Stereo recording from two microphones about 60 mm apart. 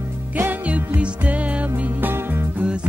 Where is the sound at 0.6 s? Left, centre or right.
Right.